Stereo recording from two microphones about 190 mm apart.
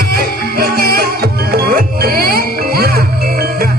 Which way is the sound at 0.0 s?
55° right (ahead or behind).